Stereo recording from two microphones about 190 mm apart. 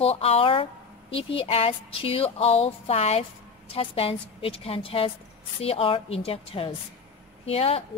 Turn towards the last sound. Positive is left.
turn(degrees=30)  # may be behind; listen again after turning